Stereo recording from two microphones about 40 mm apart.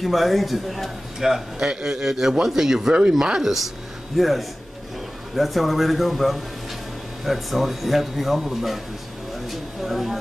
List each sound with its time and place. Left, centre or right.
0.0 s a man's voice: centre
4.2 s speech: centre
9.5 s a sound: centre